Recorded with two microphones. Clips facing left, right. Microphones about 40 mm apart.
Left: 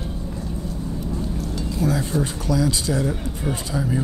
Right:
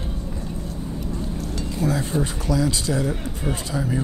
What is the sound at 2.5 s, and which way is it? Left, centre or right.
Speech, right.